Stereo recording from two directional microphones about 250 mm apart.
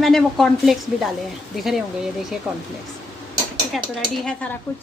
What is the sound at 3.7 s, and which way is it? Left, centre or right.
Speech, centre.